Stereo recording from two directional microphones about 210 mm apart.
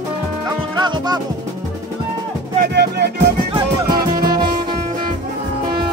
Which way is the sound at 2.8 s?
50° right (ahead or behind).